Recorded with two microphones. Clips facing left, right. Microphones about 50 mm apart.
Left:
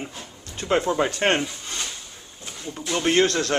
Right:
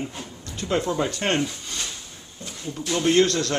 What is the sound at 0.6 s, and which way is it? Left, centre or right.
A man's voice, centre.